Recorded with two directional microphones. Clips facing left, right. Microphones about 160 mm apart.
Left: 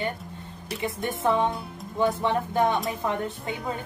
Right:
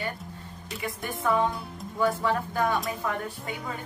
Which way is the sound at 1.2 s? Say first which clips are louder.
Left 1 dB; 25° left (ahead or behind).